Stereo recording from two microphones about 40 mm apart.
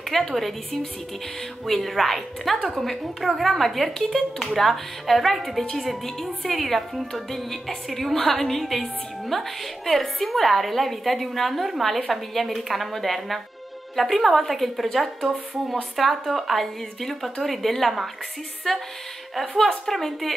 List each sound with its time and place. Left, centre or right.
0.1 s a woman's voice: centre
1.7 s a woman's voice: centre